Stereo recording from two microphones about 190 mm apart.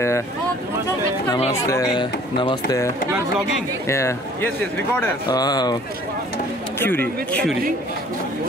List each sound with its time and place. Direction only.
1.5 s speech: 15° left (ahead or behind)
3.8 s speech: 15° left (ahead or behind)
5.3 s speech: 20° left (ahead or behind)
6.8 s speech: 10° left (ahead or behind)